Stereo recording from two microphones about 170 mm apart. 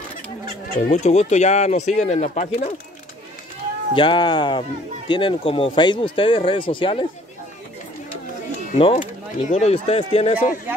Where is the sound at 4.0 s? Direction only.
30° left (ahead or behind).